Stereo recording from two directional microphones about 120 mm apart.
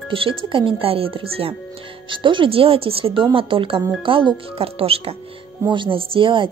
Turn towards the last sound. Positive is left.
turn(degrees=-45)  # may be behind; listen again after turning